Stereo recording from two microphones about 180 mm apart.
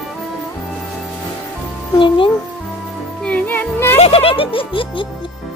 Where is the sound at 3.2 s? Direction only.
10° left (ahead or behind).